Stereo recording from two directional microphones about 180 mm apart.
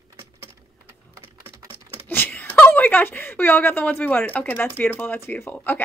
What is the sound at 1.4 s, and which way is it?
Typing, 15° right (ahead or behind).